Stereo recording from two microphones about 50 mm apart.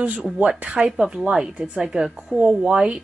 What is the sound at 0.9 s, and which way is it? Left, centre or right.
A woman's voice, centre.